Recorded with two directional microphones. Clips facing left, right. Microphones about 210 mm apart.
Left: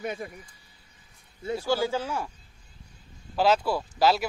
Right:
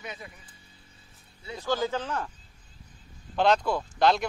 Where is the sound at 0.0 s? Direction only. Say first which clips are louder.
Left 8 dB; 50° left (ahead or behind).